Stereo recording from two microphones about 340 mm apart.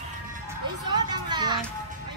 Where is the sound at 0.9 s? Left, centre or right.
Centre.